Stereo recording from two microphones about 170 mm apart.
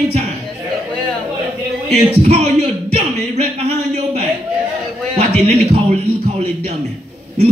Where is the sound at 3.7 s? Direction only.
35° right (ahead or behind).